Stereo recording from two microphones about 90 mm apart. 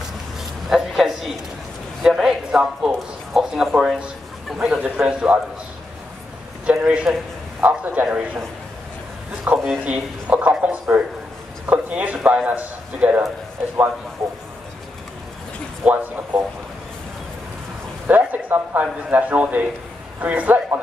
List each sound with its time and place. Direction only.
0.7 s a sound: centre (ahead or behind)
2.0 s a man's voice: 5° right (ahead or behind)
6.6 s a man's voice: 15° right (ahead or behind)
9.5 s a man's voice: 20° right (ahead or behind)
15.8 s speech: 20° right (ahead or behind)
18.0 s speech: 20° right (ahead or behind)